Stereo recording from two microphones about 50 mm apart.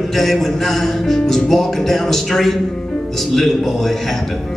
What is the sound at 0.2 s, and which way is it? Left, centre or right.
Music, centre.